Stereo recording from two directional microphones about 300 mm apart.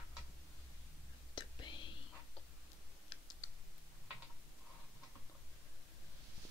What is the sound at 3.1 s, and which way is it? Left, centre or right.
Computer keyboard, centre.